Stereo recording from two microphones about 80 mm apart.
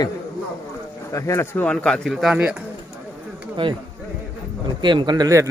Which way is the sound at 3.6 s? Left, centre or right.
Right.